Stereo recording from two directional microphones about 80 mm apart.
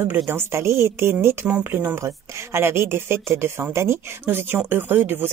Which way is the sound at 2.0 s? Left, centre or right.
Right.